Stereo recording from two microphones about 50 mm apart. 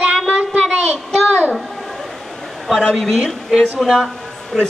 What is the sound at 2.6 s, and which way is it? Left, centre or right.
Speech, centre.